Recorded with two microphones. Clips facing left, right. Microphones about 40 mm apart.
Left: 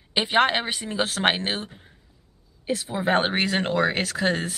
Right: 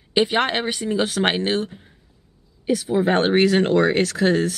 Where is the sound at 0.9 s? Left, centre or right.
Left.